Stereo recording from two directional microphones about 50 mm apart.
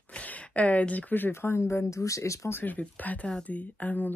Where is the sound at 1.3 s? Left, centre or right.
Left.